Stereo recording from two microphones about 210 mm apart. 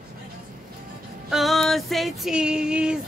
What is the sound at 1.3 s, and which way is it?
Speech, centre (ahead or behind).